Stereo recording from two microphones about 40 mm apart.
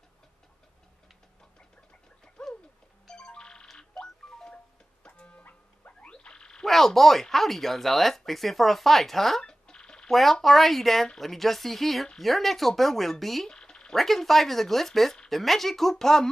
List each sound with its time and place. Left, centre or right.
2.4 s bird: left
3.1 s music: left
5.2 s a sound: left
5.9 s frog: left
6.6 s speech: centre
9.4 s a sound: left
10.0 s speech: centre
13.5 s frog: left
13.9 s speech: centre